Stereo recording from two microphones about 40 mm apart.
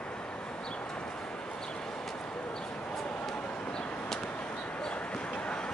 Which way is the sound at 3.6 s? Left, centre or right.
Left.